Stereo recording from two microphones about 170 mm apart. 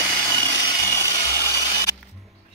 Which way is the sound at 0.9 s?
15° left (ahead or behind).